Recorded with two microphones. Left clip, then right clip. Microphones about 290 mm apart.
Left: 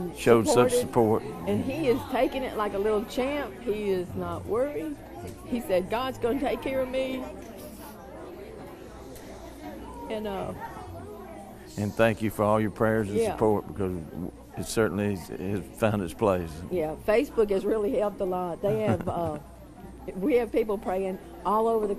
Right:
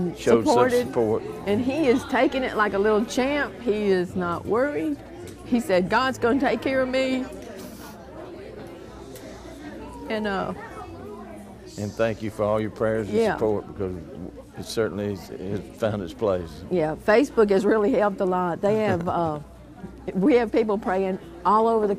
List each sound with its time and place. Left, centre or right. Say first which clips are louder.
0.2 s speech: right 2 dB; left
1.4 s a woman's voice: right 5 dB; right
10.0 s speech: right 6 dB; right
11.8 s speech: left 1 dB; left
13.1 s a woman's voice: right 5 dB; right
13.4 s speech: even; left
16.7 s a woman's voice: right 5 dB; right